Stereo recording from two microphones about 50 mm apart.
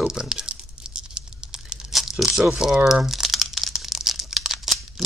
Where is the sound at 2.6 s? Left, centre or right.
Centre.